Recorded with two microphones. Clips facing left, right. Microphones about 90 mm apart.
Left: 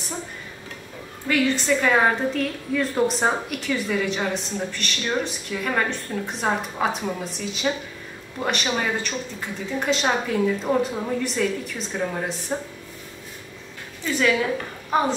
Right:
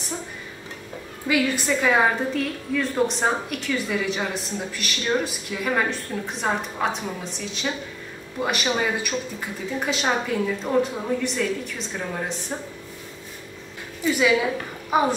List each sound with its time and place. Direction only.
1.2 s a woman's voice: 5° right (ahead or behind)
14.0 s a woman's voice: 10° right (ahead or behind)